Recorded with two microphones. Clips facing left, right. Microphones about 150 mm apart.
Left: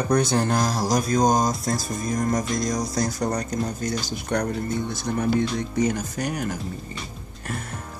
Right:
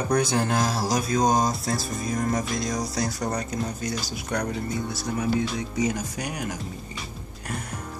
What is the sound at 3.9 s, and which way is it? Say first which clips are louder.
Speech: left 3 dB; 5° right (ahead or behind).